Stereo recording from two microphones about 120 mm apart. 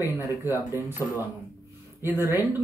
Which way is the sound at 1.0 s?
25° left (ahead or behind).